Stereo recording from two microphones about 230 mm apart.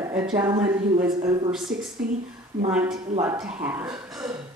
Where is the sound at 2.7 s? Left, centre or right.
Centre.